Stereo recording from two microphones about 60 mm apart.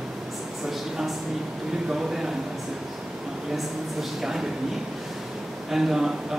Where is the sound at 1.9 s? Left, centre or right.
Centre.